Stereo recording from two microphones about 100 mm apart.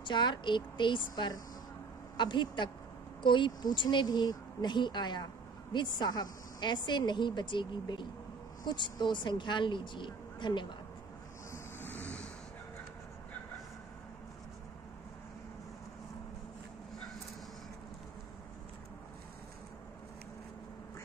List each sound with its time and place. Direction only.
0.0 s speech: 50° left (ahead or behind)
11.5 s vehicle: 20° left (ahead or behind)